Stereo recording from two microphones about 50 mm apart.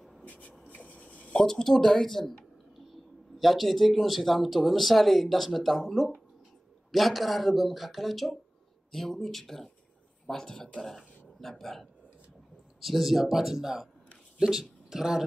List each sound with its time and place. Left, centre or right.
0.2 s rub: left
0.7 s a sound: left
1.4 s speech: centre